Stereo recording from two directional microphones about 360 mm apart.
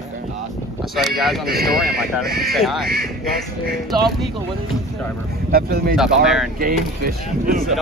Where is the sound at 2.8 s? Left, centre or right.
Right.